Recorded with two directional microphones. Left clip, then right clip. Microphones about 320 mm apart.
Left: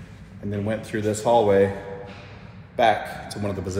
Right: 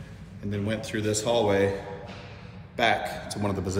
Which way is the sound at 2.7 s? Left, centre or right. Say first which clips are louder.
Left 4 dB; centre.